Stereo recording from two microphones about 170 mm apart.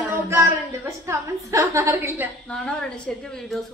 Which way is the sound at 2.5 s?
5° left (ahead or behind).